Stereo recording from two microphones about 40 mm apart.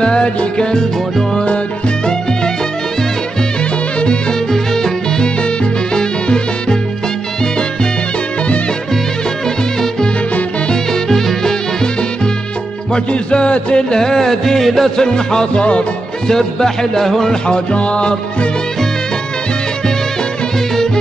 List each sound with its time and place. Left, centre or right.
0.0 s music: left
4.5 s music: centre
10.7 s music: centre
12.9 s music: left; by 14.9 s centre
15.0 s music: centre
17.5 s music: left
20.7 s music: centre